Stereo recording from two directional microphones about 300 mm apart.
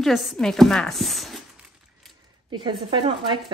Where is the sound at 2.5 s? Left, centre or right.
Centre.